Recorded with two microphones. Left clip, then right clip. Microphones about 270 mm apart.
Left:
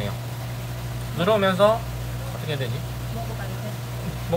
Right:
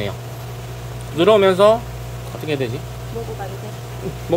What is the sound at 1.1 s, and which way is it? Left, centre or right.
Speech, right.